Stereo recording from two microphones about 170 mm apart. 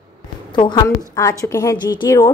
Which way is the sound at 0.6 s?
25° left (ahead or behind).